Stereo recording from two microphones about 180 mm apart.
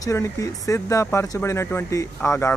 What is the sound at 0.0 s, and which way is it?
Speech, 15° left (ahead or behind).